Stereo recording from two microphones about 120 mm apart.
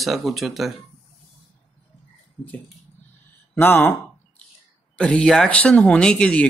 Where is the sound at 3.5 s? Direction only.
15° left (ahead or behind).